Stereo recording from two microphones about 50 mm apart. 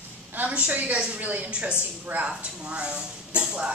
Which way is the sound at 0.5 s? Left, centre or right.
Right.